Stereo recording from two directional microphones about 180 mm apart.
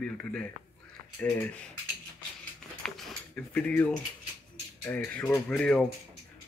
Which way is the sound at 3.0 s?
5° left (ahead or behind).